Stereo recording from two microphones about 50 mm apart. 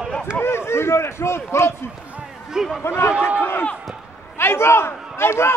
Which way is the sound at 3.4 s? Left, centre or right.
Left.